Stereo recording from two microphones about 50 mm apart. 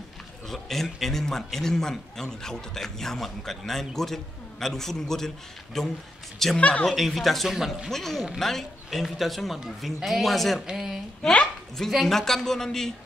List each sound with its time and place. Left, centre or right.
0.5 s speech: centre
6.6 s speech: left
6.9 s speech: centre
7.9 s speech: centre
11.2 s speech: centre